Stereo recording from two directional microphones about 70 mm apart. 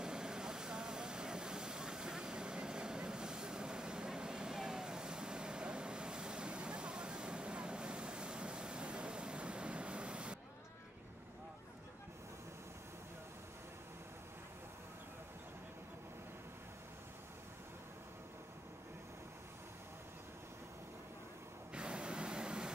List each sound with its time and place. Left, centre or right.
0.0 s vehicle: centre
21.7 s vehicle: centre